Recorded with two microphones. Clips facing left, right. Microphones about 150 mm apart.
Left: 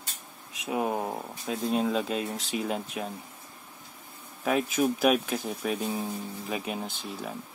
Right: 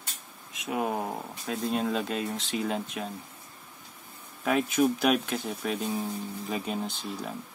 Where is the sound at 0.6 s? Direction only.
15° left (ahead or behind).